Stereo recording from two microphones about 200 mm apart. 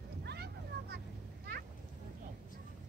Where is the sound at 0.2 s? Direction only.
55° right (ahead or behind).